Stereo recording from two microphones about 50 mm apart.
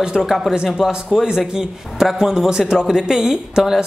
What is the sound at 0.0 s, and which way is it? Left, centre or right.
Speech, centre.